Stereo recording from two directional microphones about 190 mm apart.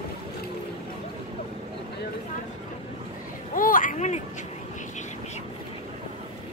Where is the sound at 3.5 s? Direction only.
45° left (ahead or behind).